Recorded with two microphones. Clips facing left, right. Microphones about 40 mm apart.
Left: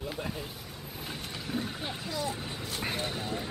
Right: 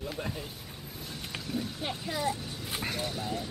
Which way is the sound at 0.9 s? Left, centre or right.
Left.